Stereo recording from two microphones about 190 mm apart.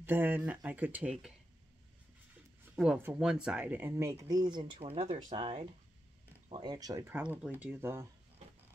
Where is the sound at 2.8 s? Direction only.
5° right (ahead or behind).